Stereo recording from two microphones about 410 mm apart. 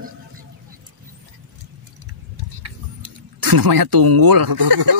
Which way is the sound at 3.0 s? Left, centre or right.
Right.